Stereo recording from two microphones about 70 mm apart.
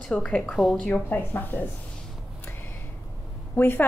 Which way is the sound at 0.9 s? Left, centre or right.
Left.